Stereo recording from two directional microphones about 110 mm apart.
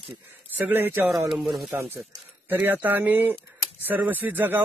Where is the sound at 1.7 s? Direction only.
20° right (ahead or behind).